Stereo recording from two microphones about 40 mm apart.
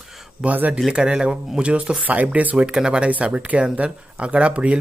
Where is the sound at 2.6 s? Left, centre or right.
Right.